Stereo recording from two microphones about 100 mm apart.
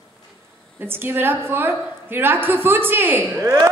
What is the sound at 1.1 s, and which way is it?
Speech, 20° right (ahead or behind).